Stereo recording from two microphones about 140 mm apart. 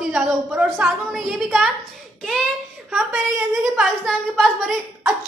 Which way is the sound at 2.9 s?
5° right (ahead or behind).